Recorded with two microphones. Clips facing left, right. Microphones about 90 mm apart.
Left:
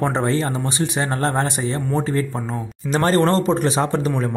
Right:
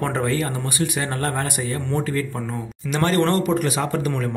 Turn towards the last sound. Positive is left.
turn(degrees=25)  # may be behind; listen again after turning